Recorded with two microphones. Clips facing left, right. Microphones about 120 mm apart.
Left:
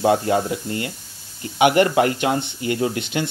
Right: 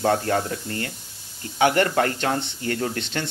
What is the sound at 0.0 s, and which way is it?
Speech, 15° left (ahead or behind).